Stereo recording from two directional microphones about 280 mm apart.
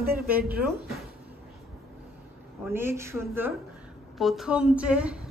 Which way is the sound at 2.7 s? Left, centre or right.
Centre.